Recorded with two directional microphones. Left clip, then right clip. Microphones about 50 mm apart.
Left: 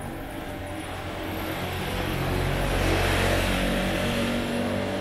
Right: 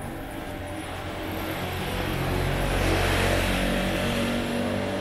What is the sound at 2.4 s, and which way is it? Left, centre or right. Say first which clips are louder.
Vehicle: even; centre.